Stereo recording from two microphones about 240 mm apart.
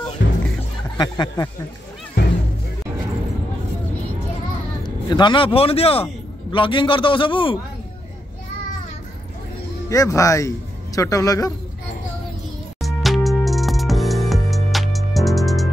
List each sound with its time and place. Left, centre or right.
0.2 s music: left
0.9 s speech: centre
4.8 s a man's voice: centre
9.8 s speech: centre
12.8 s music: centre